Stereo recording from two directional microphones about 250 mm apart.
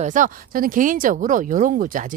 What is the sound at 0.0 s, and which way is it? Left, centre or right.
Speech, right.